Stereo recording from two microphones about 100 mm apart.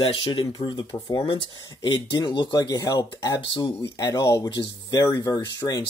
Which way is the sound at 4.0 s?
35° left (ahead or behind).